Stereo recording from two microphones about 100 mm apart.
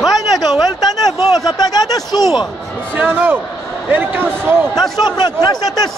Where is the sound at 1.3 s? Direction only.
40° left (ahead or behind).